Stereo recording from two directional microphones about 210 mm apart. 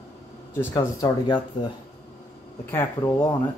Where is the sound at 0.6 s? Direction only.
15° left (ahead or behind).